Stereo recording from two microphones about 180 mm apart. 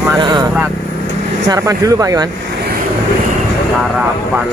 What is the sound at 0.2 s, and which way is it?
Vehicle, 25° right (ahead or behind).